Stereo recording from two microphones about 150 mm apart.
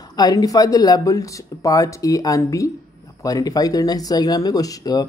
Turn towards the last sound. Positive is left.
turn(degrees=25)  # may be behind; listen again after turning